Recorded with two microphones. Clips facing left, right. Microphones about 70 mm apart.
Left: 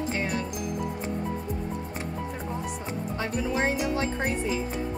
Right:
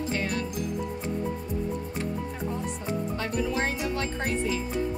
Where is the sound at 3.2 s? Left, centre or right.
Centre.